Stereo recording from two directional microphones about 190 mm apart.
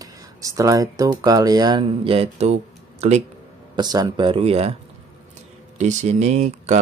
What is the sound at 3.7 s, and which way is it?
Speech, 20° right (ahead or behind).